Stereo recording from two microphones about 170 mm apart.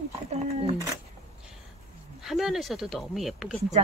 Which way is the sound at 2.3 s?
Centre (ahead or behind).